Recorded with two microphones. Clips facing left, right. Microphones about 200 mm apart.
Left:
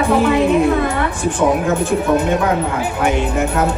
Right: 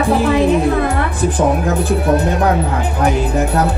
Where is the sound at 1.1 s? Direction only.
35° right (ahead or behind).